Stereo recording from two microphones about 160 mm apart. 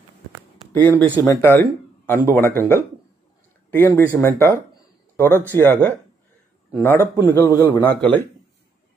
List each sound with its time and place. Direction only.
0.7 s speech: 10° left (ahead or behind)